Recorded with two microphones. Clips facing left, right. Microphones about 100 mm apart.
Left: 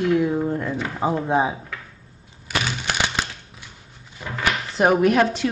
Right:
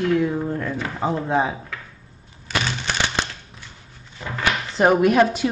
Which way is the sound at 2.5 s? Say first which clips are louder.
Right 1 dB; 10° left (ahead or behind).